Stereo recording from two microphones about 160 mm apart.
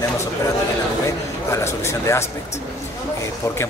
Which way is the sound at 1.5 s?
15° left (ahead or behind).